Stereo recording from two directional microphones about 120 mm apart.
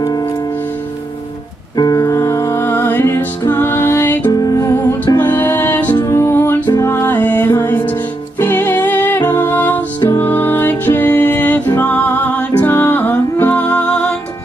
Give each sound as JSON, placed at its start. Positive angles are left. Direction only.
{"t": 1.8, "sound": "music", "side_deg": 35}
{"t": 4.3, "sound": "music", "side_deg": 30}
{"t": 5.2, "sound": "music", "side_deg": 20}
{"t": 6.6, "sound": "music", "side_deg": 35}
{"t": 6.9, "sound": "music", "side_deg": 15}